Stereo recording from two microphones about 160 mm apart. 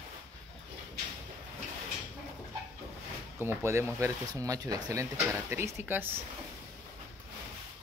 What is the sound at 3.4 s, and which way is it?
Speech, 15° right (ahead or behind).